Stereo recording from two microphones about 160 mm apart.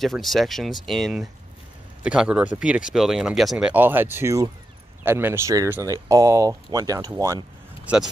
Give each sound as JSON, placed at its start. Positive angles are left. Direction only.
{"t": 0.0, "sound": "speech", "side_deg": 0}
{"t": 7.8, "sound": "speech", "side_deg": -5}